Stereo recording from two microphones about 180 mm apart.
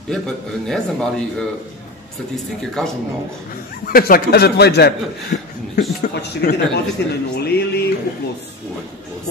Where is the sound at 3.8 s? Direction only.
55° left (ahead or behind).